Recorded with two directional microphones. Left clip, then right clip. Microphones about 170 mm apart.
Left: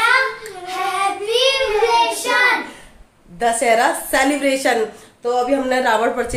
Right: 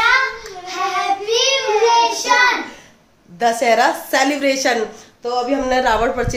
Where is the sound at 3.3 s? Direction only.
25° right (ahead or behind).